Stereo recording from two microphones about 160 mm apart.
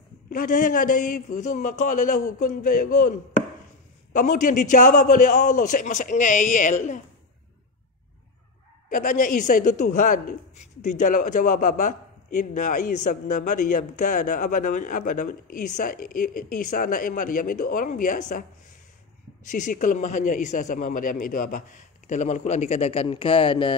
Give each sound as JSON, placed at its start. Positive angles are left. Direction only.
{"t": 0.3, "sound": "speech", "side_deg": 55}
{"t": 8.8, "sound": "a woman's voice", "side_deg": 55}
{"t": 19.5, "sound": "speech", "side_deg": 50}